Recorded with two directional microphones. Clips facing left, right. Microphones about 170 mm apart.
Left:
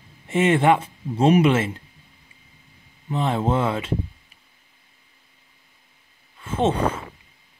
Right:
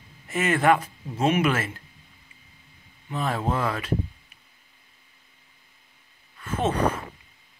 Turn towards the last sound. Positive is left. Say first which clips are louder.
# left 3 dB
turn(degrees=25)  # may be behind; listen again after turning